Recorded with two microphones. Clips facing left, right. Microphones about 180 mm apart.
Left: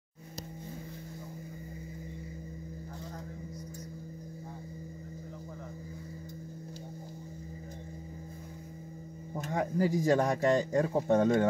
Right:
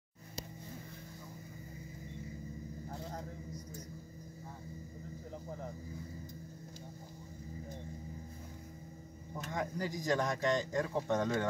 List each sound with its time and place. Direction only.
9.3 s a sound: 35° left (ahead or behind)
9.6 s speech: 50° left (ahead or behind)
10.2 s speech: 35° left (ahead or behind)